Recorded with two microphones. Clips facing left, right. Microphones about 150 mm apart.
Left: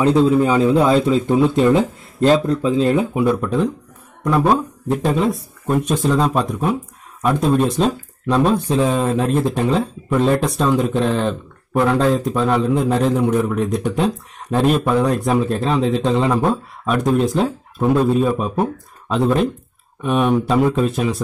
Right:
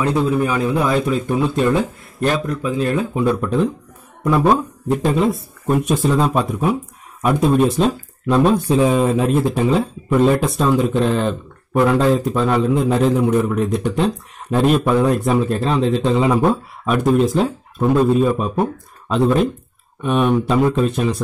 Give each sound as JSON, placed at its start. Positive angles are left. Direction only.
{"t": 0.0, "sound": "a man's voice", "side_deg": 25}
{"t": 3.2, "sound": "speech", "side_deg": 5}